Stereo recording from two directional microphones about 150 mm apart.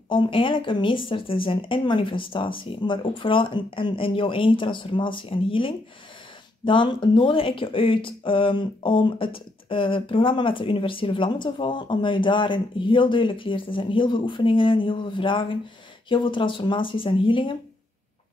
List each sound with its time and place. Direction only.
0.1 s speech: 35° left (ahead or behind)